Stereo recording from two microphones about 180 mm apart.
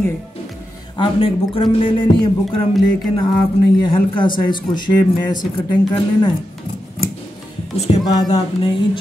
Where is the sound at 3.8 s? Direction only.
25° left (ahead or behind).